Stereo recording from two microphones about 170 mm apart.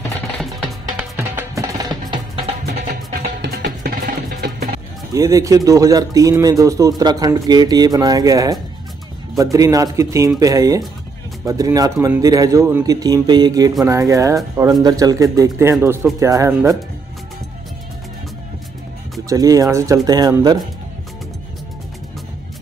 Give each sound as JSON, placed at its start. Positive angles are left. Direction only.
{"t": 0.4, "sound": "music", "side_deg": 0}
{"t": 1.1, "sound": "music", "side_deg": -15}
{"t": 2.9, "sound": "music", "side_deg": -65}
{"t": 5.1, "sound": "speech", "side_deg": -20}
{"t": 19.2, "sound": "speech", "side_deg": -20}